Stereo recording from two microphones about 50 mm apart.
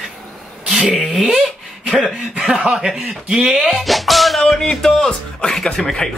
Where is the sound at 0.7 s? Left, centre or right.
Centre.